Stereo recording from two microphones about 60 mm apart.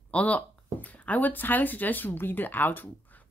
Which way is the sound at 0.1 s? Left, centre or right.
Left.